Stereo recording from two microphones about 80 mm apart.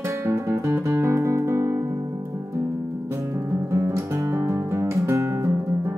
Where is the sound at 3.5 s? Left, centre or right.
Right.